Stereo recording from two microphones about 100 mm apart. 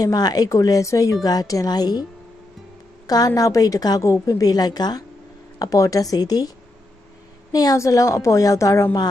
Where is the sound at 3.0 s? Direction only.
40° left (ahead or behind).